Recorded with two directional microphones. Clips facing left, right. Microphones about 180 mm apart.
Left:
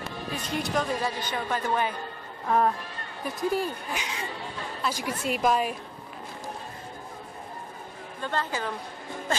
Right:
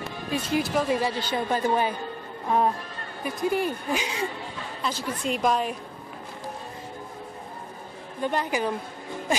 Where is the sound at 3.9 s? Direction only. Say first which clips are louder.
Right 6 dB; 30° right (ahead or behind).